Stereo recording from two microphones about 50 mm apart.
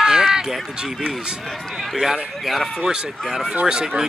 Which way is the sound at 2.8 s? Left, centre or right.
Centre.